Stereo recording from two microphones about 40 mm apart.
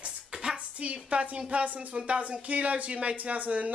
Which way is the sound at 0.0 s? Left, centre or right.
Right.